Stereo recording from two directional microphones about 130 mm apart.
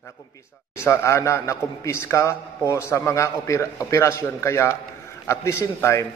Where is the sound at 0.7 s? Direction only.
20° left (ahead or behind).